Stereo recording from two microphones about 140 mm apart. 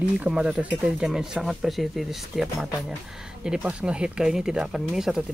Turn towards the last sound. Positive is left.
turn(degrees=-5)  # may be behind; listen again after turning